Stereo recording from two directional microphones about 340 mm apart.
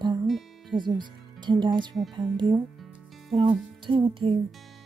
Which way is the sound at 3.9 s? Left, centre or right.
Centre.